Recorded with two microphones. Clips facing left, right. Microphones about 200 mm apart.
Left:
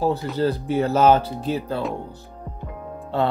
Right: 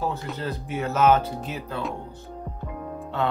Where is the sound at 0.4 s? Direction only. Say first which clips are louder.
Left 11 dB; 35° left (ahead or behind).